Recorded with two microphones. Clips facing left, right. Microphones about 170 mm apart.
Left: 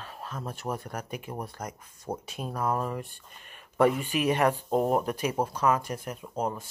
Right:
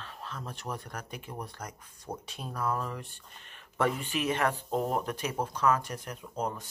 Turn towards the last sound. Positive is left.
turn(degrees=10)  # may be behind; listen again after turning